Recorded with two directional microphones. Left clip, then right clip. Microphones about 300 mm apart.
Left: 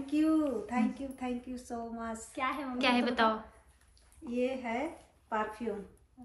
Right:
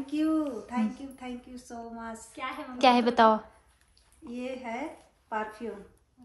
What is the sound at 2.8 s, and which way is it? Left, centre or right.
Speech, centre.